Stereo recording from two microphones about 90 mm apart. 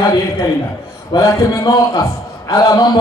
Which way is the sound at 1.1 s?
40° left (ahead or behind).